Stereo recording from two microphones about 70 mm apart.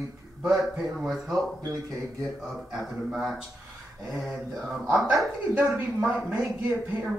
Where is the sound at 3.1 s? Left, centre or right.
Centre.